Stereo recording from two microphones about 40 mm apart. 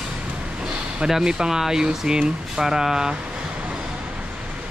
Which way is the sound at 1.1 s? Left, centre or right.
Centre.